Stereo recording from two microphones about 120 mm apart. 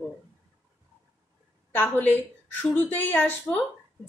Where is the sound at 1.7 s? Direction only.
15° left (ahead or behind).